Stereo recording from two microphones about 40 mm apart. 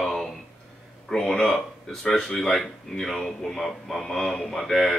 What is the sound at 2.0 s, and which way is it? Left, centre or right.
Speech, centre.